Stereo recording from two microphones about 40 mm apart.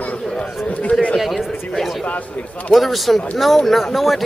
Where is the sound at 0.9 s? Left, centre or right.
Left.